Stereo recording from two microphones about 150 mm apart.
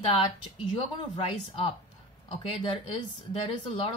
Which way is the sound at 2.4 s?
35° left (ahead or behind).